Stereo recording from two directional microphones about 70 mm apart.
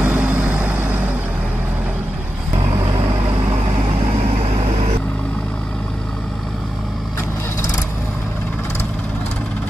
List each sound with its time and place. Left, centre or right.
0.0 s vehicle: right